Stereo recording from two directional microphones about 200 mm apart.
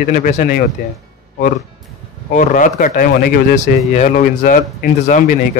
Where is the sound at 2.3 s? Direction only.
40° left (ahead or behind).